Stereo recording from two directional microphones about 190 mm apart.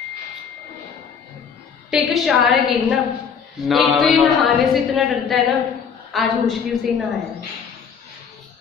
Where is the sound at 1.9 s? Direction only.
Centre (ahead or behind).